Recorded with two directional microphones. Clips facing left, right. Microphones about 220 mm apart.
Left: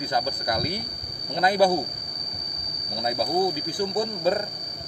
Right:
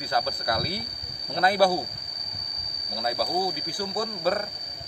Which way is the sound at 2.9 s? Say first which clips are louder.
Left 2 dB; 20° left (ahead or behind).